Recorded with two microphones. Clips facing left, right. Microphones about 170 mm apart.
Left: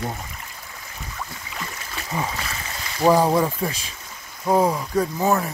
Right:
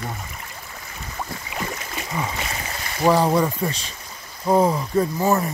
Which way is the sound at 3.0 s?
10° left (ahead or behind).